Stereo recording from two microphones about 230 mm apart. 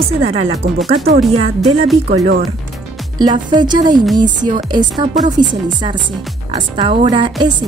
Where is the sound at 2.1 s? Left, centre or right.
Right.